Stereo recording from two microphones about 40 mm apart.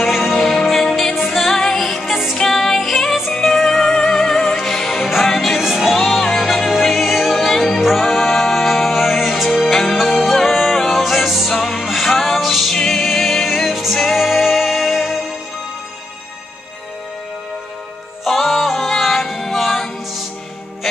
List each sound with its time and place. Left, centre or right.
0.0 s music: centre
2.3 s music: centre
3.9 s music: centre
5.6 s music: centre
18.2 s music: centre